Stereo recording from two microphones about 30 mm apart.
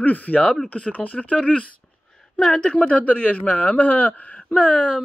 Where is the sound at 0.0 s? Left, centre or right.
Left.